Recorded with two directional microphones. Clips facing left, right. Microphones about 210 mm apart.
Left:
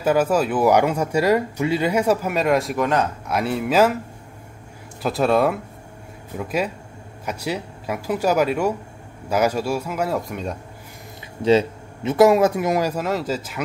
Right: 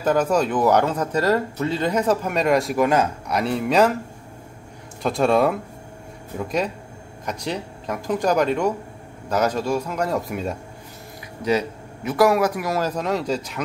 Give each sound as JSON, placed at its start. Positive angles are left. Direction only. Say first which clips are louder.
{"t": 0.0, "sound": "speech", "louder": "left 1 dB", "side_deg": 5}
{"t": 5.0, "sound": "speech", "louder": "even", "side_deg": 5}
{"t": 11.4, "sound": "a man's voice", "louder": "left 5 dB", "side_deg": 25}
{"t": 12.9, "sound": "speech", "louder": "even", "side_deg": 5}